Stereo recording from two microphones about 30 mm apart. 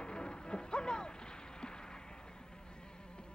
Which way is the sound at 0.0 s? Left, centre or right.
Left.